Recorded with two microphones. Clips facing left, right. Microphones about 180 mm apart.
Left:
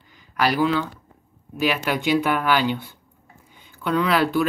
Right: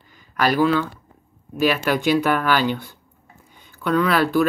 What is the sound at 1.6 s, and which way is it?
Speech, 15° left (ahead or behind).